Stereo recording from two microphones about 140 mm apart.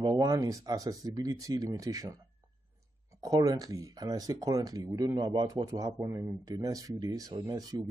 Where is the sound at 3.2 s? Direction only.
25° right (ahead or behind).